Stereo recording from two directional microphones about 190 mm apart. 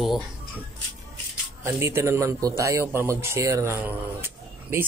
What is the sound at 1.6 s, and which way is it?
A man's voice, 15° right (ahead or behind).